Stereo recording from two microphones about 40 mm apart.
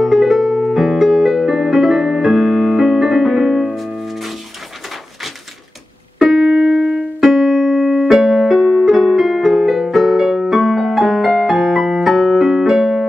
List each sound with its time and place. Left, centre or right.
0.0 s music: centre
6.2 s keyboard: centre
6.5 s music: centre
7.2 s keyboard: centre
8.2 s music: centre
8.5 s piano: centre
8.8 s music: centre
12.1 s keyboard: centre
12.7 s electric piano: centre